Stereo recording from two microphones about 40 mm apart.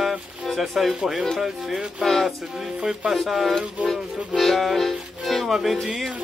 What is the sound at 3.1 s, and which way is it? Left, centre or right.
Music, centre.